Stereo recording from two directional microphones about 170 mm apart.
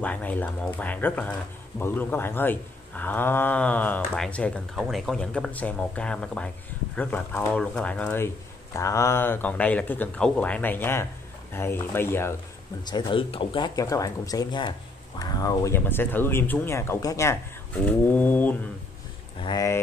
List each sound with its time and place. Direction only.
0.0 s speech: 10° left (ahead or behind)
12.8 s speech: 25° left (ahead or behind); by 18.6 s 10° left (ahead or behind)
19.4 s speech: 20° left (ahead or behind)